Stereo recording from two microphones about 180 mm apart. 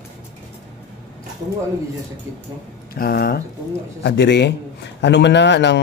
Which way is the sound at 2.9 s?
55° left (ahead or behind).